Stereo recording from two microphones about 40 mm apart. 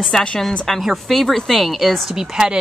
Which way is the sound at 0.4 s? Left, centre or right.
Centre.